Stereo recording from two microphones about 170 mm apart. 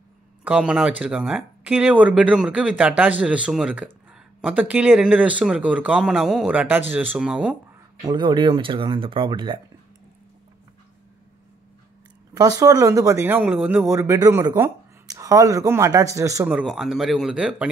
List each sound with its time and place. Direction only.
0.4 s speech: 5° right (ahead or behind)
8.0 s speech: 25° right (ahead or behind)
12.4 s speech: 20° right (ahead or behind)
16.4 s speech: 5° right (ahead or behind)